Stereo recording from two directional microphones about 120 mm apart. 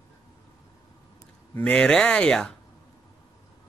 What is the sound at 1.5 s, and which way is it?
Speech, 10° left (ahead or behind).